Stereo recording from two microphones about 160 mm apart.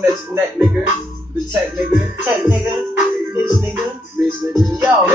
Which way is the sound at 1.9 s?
10° right (ahead or behind).